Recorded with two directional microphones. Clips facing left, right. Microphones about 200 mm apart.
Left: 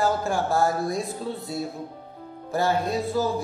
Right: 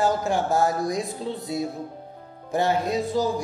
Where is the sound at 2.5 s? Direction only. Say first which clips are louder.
Right 1 dB; 20° right (ahead or behind).